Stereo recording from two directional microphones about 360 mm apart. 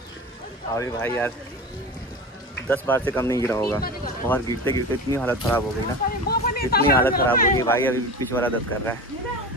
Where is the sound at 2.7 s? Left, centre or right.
Centre.